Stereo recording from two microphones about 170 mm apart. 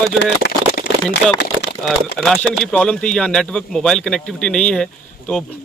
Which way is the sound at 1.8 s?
5° left (ahead or behind).